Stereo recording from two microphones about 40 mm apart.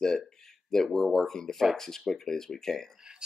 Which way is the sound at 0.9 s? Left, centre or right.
Centre.